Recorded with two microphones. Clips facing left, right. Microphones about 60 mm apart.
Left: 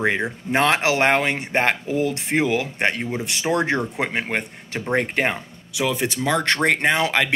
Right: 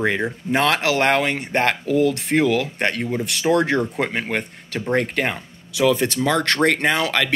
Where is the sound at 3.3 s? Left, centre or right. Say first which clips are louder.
Right 3 dB; left.